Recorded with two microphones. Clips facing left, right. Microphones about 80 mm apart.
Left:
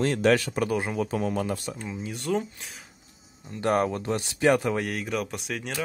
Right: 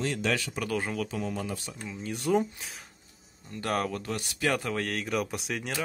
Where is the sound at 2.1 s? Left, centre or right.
Centre.